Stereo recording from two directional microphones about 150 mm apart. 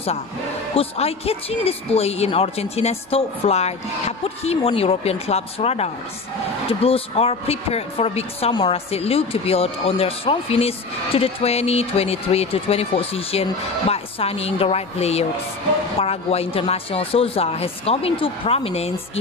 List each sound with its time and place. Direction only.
0.7 s speech: 40° left (ahead or behind)